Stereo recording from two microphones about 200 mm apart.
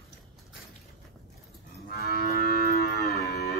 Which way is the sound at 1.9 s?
50° left (ahead or behind).